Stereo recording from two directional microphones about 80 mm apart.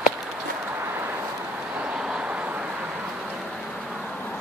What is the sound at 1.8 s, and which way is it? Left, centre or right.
Vehicle, centre.